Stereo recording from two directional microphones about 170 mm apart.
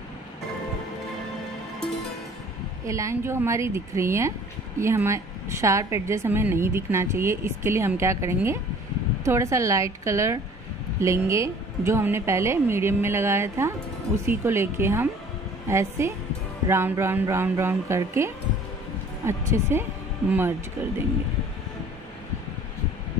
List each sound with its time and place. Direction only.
2.8 s a woman's voice: 20° right (ahead or behind)